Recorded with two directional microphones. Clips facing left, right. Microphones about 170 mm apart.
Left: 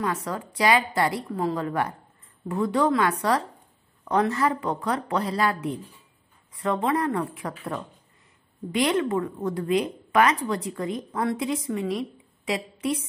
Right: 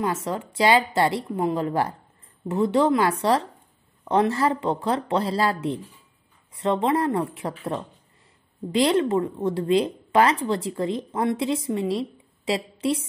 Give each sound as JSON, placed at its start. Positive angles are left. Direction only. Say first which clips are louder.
{"t": 0.0, "sound": "speech", "louder": "right 2 dB", "side_deg": -25}